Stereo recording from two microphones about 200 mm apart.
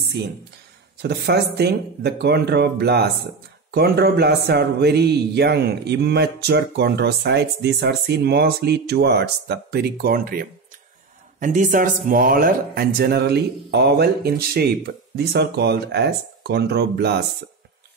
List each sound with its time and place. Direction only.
1.0 s speech: 55° right (ahead or behind)